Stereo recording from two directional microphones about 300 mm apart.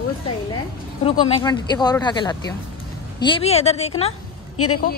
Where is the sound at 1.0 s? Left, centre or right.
Centre.